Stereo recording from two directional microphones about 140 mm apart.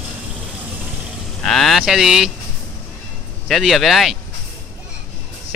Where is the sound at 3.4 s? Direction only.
Centre (ahead or behind).